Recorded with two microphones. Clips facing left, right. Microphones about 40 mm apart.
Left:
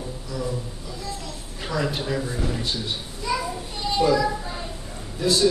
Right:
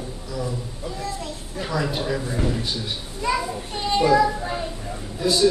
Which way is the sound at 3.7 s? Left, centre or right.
Right.